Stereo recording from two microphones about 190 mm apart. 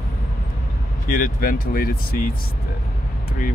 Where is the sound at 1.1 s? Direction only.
50° left (ahead or behind).